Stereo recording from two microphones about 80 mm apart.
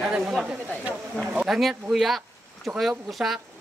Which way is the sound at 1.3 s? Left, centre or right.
Centre.